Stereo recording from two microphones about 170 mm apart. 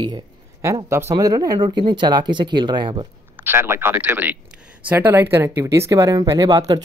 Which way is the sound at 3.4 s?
15° right (ahead or behind).